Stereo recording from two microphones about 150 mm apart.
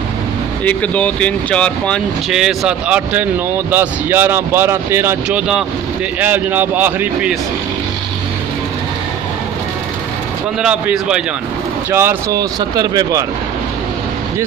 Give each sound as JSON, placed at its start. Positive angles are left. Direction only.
{"t": 0.7, "sound": "speech", "side_deg": 10}
{"t": 10.6, "sound": "speech", "side_deg": -5}
{"t": 12.4, "sound": "speech", "side_deg": -25}